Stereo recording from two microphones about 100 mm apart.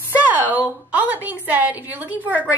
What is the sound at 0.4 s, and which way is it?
A woman's voice, 15° right (ahead or behind).